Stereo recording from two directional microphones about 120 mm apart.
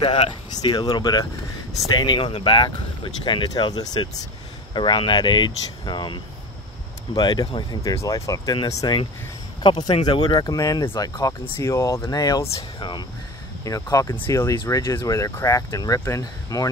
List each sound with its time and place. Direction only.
0.0 s speech: 50° left (ahead or behind)
0.5 s speech: 35° left (ahead or behind)
7.2 s speech: 35° left (ahead or behind)
9.6 s speech: 40° left (ahead or behind)